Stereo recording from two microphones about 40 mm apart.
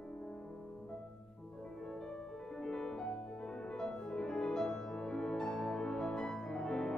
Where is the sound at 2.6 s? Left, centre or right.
Centre.